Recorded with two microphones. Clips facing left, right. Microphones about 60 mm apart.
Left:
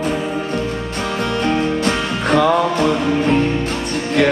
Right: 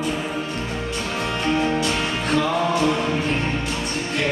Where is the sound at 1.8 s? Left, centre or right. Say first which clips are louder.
Left 4 dB; left.